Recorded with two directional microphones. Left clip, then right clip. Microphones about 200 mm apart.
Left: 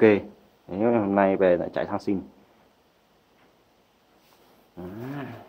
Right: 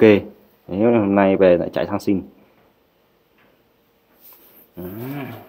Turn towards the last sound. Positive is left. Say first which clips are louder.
# right 5 dB
turn(degrees=-15)  # may be behind; listen again after turning